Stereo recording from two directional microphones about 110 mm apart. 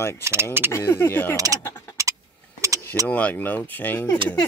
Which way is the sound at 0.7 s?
25° left (ahead or behind).